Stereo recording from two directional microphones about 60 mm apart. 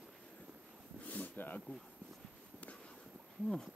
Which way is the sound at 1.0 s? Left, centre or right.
Left.